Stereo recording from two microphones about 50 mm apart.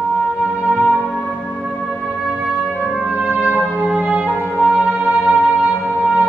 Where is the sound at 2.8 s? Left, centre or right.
Right.